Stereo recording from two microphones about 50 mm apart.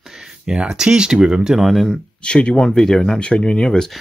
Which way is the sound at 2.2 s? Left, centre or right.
Left.